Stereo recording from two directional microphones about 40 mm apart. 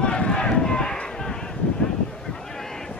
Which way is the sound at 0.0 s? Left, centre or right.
Left.